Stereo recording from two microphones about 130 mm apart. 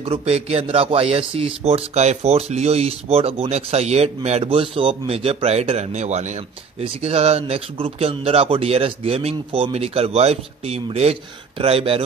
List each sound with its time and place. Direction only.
0.0 s speech: 50° right (ahead or behind)